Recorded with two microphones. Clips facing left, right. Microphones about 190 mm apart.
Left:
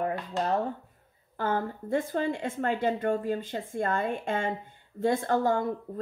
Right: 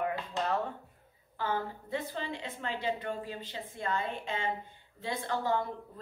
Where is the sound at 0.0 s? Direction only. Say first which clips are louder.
Left 4 dB; 35° left (ahead or behind).